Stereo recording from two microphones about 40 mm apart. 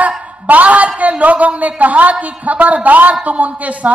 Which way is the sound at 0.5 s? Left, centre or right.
Right.